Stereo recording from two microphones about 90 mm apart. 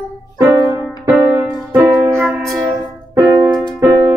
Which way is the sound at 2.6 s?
30° right (ahead or behind).